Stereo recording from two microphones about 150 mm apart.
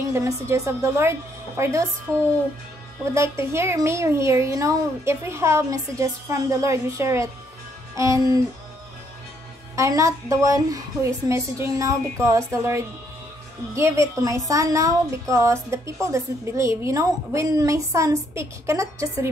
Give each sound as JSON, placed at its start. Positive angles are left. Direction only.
{"t": 0.1, "sound": "a woman's voice", "side_deg": -20}
{"t": 3.2, "sound": "a woman's voice", "side_deg": -15}
{"t": 9.8, "sound": "a woman's voice", "side_deg": -20}